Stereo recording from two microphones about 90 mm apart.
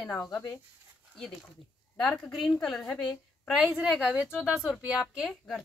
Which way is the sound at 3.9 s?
10° right (ahead or behind).